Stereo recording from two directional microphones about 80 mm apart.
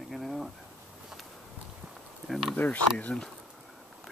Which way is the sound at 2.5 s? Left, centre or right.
Centre.